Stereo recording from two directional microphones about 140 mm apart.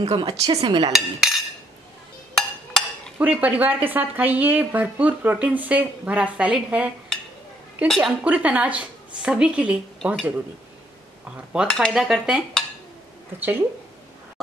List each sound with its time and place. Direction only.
0.0 s speech: 35° right (ahead or behind)
0.9 s cutlery: centre (ahead or behind)
3.2 s speech: 10° right (ahead or behind)
7.9 s speech: 5° right (ahead or behind)
11.7 s cutlery: centre (ahead or behind)
13.4 s speech: 15° right (ahead or behind)